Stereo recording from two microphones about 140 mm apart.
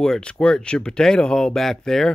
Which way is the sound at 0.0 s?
5° left (ahead or behind).